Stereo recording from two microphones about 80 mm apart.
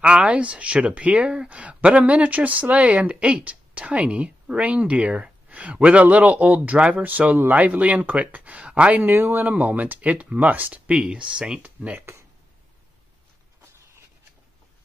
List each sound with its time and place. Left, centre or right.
0.0 s speech: centre
9.1 s speech: right